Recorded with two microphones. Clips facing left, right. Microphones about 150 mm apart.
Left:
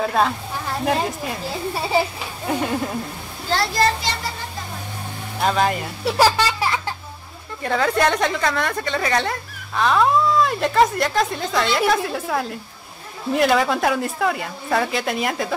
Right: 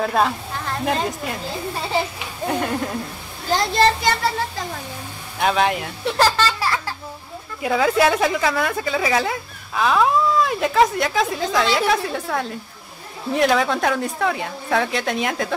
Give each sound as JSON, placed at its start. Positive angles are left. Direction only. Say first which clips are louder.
{"t": 0.0, "sound": "a woman's voice", "louder": "even", "side_deg": 0}
{"t": 2.4, "sound": "speech", "louder": "even", "side_deg": 0}
{"t": 3.4, "sound": "a child's voice", "louder": "right 2 dB", "side_deg": -20}
{"t": 5.4, "sound": "speech", "louder": "right 1 dB", "side_deg": 0}
{"t": 6.1, "sound": "baby laughter", "louder": "left 1 dB", "side_deg": 10}
{"t": 7.6, "sound": "speech", "louder": "right 2 dB", "side_deg": -5}